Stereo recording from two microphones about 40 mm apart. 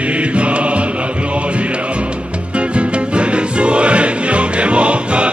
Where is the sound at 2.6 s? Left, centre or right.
Right.